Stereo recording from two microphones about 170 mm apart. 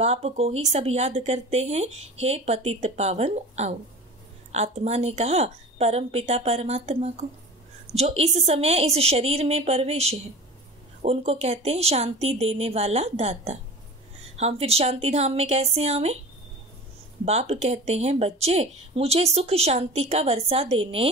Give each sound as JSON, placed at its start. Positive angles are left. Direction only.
{"t": 0.0, "sound": "speech", "side_deg": -40}
{"t": 17.2, "sound": "speech", "side_deg": -40}